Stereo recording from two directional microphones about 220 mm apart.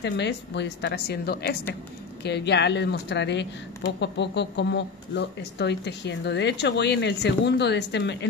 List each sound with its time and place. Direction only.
0.0 s speech: 50° left (ahead or behind)